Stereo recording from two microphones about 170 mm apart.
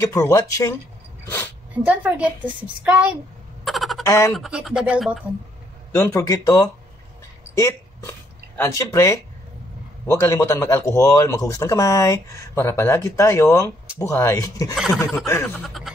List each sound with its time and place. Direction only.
0.0 s speech: 20° left (ahead or behind)
1.2 s a sound: 15° left (ahead or behind)
1.9 s a woman's voice: 5° right (ahead or behind)
3.6 s a sound: centre (ahead or behind)
4.0 s speech: 20° left (ahead or behind)
4.3 s speech: centre (ahead or behind)
5.9 s speech: 15° left (ahead or behind)
14.8 s speech: centre (ahead or behind)
15.1 s speech: 15° left (ahead or behind)
15.6 s a sound: centre (ahead or behind)